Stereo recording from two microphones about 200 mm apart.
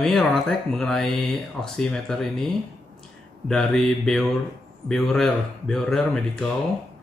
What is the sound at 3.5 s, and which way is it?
Speech, centre (ahead or behind).